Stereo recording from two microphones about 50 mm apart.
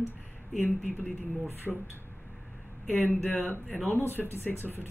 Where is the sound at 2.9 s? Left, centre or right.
Left.